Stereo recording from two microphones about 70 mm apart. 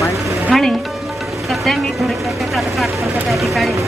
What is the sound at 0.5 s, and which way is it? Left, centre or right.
Music, centre.